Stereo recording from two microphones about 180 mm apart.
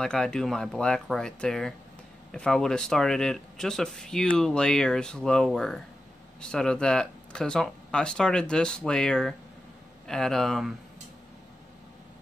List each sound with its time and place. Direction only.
0.0 s speech: 5° left (ahead or behind)